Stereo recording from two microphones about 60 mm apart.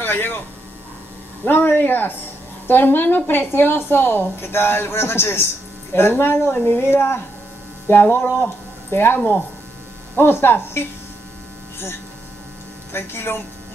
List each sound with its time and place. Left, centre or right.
0.0 s speech: left
1.4 s a woman's voice: left
12.9 s a woman's voice: left